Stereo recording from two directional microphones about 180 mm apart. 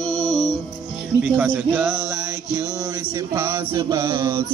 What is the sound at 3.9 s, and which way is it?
Music, 15° right (ahead or behind).